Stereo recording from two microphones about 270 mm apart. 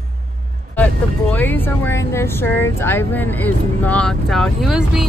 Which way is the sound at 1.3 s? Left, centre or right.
Centre.